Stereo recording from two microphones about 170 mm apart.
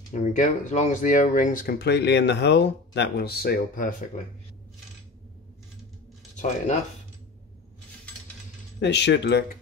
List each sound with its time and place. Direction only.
0.1 s speech: 50° left (ahead or behind)
6.3 s speech: 45° left (ahead or behind)
8.7 s speech: 90° left